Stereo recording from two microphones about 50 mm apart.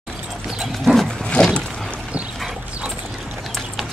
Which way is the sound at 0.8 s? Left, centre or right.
Centre.